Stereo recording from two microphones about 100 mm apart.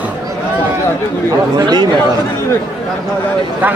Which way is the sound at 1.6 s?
45° right (ahead or behind).